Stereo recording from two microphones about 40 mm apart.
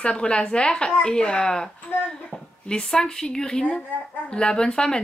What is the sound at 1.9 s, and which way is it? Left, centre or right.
Speech, left.